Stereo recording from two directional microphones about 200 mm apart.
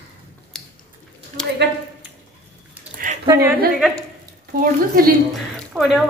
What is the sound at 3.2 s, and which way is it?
Speech, 15° right (ahead or behind).